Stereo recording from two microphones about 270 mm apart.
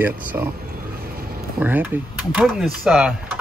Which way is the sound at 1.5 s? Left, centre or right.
Centre.